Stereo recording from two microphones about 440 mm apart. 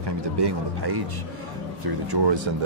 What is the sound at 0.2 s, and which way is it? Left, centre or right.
Speech, right.